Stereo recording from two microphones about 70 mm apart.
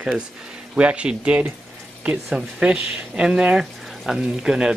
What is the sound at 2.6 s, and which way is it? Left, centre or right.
Speech, centre.